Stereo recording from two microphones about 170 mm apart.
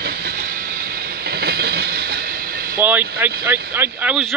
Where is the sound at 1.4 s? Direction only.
70° right (ahead or behind).